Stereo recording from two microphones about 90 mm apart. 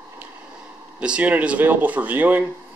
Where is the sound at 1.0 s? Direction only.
15° right (ahead or behind).